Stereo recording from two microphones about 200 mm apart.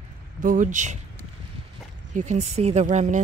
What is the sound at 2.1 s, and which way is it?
Speech, 35° right (ahead or behind).